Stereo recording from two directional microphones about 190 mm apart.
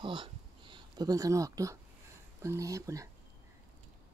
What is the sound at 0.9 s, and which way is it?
Speech, 20° right (ahead or behind).